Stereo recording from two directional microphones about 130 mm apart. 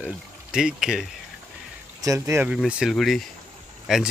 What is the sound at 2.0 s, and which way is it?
Speech, 25° right (ahead or behind).